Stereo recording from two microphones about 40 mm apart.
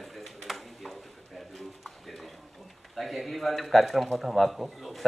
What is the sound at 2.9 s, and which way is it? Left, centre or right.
Speech, centre.